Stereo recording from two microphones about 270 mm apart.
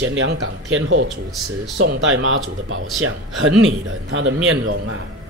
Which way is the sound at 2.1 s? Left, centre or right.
Right.